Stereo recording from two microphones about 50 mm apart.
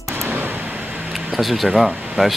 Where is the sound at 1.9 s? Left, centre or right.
Right.